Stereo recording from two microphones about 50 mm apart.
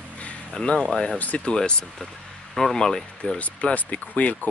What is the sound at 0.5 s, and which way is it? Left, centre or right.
Speech, centre.